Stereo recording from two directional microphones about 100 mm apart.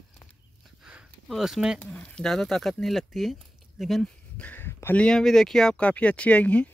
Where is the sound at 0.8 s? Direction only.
5° right (ahead or behind).